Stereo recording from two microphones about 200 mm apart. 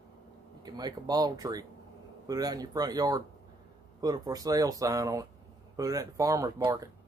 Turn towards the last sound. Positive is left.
turn(degrees=-20)  # may be behind; listen again after turning